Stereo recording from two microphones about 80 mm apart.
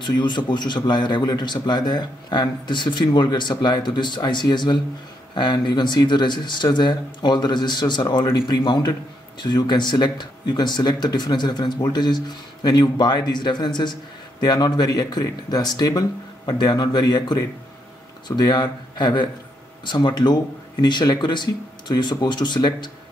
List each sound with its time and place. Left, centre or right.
0.0 s a man's voice: left